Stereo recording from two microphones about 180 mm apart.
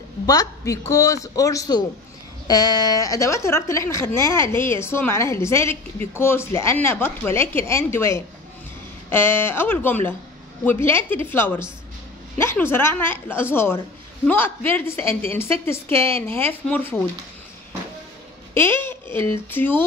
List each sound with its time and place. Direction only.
0.3 s a man's voice: 20° left (ahead or behind)
18.5 s speech: 15° left (ahead or behind)